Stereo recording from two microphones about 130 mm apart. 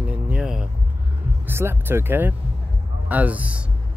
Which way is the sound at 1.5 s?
20° right (ahead or behind).